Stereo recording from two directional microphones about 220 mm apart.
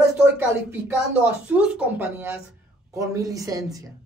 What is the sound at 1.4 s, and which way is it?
Speech, 5° right (ahead or behind).